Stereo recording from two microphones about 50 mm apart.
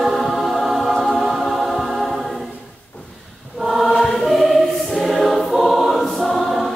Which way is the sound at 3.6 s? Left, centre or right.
Centre.